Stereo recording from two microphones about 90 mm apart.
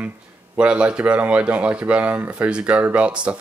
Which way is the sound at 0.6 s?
10° right (ahead or behind).